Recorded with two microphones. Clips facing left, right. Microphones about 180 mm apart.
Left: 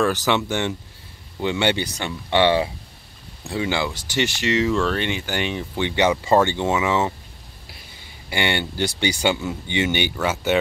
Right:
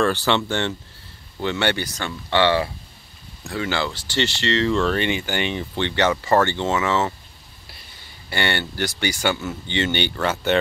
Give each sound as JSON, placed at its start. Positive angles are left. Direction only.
{"t": 0.0, "sound": "speech", "side_deg": 5}
{"t": 5.9, "sound": "speech", "side_deg": 10}
{"t": 8.3, "sound": "speech", "side_deg": 15}